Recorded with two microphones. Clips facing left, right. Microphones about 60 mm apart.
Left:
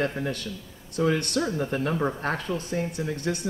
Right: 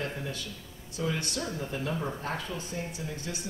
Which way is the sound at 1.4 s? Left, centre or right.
Left.